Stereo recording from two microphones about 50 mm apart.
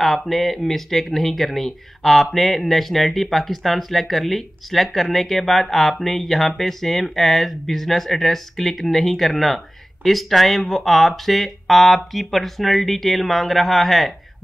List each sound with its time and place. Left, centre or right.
0.0 s speech: centre